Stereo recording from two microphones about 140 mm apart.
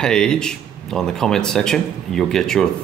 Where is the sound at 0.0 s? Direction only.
5° left (ahead or behind).